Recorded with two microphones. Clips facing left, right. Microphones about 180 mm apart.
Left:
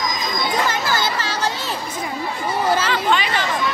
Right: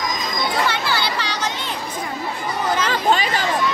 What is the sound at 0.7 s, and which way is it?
Chatter, 45° left (ahead or behind).